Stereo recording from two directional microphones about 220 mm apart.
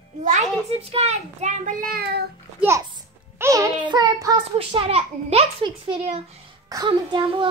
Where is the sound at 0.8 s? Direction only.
30° right (ahead or behind); by 2.2 s 45° right (ahead or behind).